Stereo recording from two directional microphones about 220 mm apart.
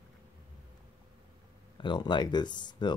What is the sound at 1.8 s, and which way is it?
Speech, 20° left (ahead or behind).